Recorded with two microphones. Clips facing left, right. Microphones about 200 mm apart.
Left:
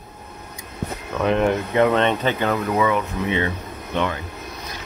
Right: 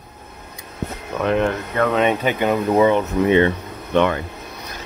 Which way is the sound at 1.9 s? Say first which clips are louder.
Right 2 dB; 10° right (ahead or behind).